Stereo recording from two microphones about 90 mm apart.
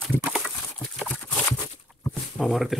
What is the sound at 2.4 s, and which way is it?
Speech, centre (ahead or behind).